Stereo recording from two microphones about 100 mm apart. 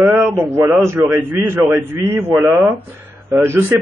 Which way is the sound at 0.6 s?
25° right (ahead or behind).